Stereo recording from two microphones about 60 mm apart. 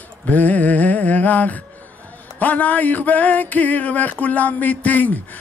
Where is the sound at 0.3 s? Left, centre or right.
Left.